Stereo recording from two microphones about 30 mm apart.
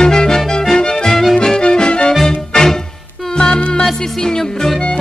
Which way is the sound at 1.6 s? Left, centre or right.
Left.